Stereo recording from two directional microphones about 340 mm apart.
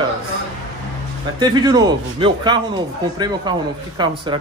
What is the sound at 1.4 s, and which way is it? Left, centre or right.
A man's voice, centre.